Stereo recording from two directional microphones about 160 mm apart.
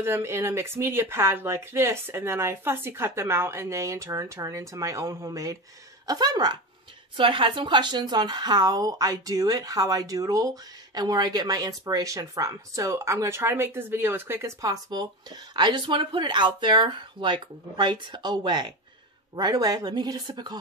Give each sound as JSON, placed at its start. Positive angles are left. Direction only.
{"t": 0.0, "sound": "a woman's voice", "side_deg": -15}